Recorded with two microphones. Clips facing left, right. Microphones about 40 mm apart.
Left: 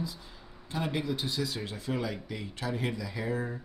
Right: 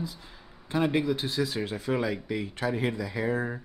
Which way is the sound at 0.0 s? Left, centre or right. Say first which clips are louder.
Right 1 dB; centre.